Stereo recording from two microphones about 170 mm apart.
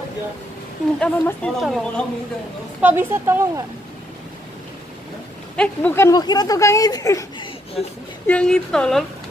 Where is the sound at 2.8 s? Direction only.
10° right (ahead or behind).